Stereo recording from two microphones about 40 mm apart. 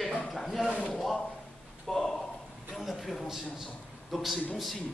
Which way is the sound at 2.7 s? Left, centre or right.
Centre.